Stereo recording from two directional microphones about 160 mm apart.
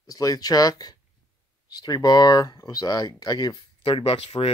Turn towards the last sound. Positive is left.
turn(degrees=40)  # may be behind; listen again after turning